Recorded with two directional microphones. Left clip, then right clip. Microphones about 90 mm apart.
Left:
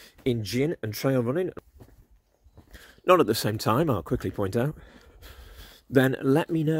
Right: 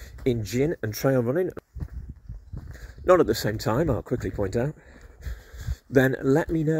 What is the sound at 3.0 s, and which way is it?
Speech, 15° left (ahead or behind).